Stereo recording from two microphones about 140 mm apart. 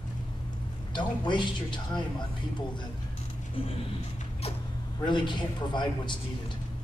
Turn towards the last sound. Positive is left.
turn(degrees=35)  # may be behind; listen again after turning